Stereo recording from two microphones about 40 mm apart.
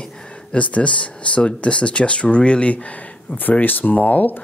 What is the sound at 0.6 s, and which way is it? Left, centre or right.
Speech, left.